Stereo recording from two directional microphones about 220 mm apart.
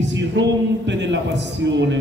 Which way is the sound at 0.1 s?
55° right (ahead or behind).